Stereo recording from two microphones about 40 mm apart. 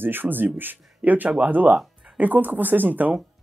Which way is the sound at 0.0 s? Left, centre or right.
Right.